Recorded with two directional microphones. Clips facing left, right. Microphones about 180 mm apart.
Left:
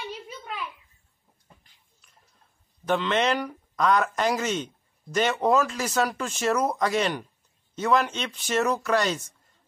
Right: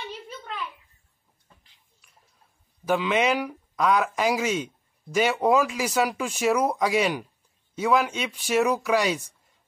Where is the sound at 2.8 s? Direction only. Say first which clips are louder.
Right 1 dB; 10° right (ahead or behind).